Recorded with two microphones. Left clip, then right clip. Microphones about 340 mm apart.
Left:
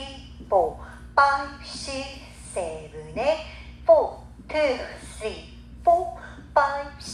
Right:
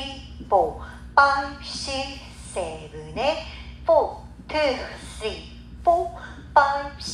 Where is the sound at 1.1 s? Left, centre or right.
Centre.